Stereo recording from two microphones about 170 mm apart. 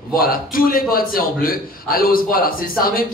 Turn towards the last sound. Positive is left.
turn(degrees=60)  # may be behind; listen again after turning